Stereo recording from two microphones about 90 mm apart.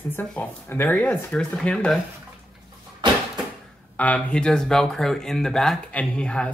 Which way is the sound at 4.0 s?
15° left (ahead or behind).